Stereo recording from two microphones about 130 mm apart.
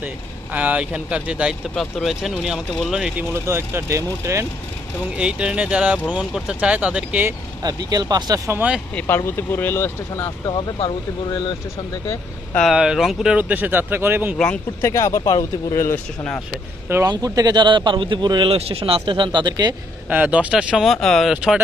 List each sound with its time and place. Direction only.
0.0 s speech: 10° right (ahead or behind)
3.3 s speech: 20° right (ahead or behind)
5.1 s speech: 5° right (ahead or behind)
7.6 s speech: 30° right (ahead or behind)
8.5 s speech: 10° right (ahead or behind)
8.9 s speech: 20° left (ahead or behind)
10.4 s speech: 35° left (ahead or behind)
12.6 s speech: 5° right (ahead or behind)
14.8 s speech: 25° left (ahead or behind)
17.1 s a man's voice: 30° right (ahead or behind)
18.5 s a man's voice: 45° right (ahead or behind)
20.1 s speech: 10° right (ahead or behind)